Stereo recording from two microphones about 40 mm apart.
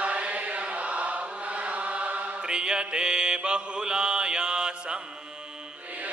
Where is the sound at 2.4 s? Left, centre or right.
Right.